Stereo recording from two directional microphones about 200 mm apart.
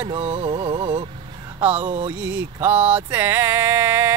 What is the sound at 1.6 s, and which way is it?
Speech, 10° right (ahead or behind).